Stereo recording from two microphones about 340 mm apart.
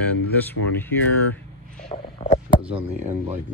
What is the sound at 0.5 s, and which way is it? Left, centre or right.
Speech, centre.